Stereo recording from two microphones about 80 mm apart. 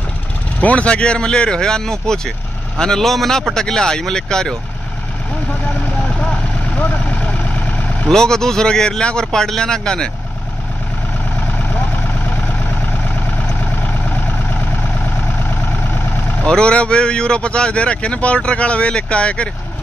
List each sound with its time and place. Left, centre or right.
0.6 s speech: centre
5.8 s vehicle: centre
8.1 s speech: centre
11.4 s vehicle: left
16.4 s speech: centre